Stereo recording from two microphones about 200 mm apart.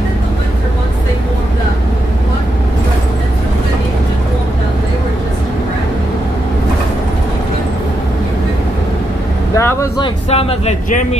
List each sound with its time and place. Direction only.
9.6 s speech: 15° left (ahead or behind); by 11.1 s 35° left (ahead or behind)